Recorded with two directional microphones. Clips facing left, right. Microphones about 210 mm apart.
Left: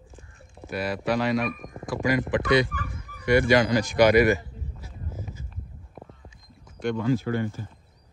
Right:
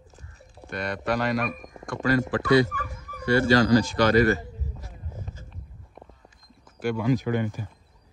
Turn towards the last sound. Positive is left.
turn(degrees=-15)  # may be behind; listen again after turning